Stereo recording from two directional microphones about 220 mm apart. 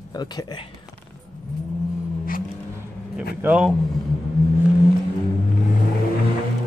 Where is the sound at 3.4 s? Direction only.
5° right (ahead or behind).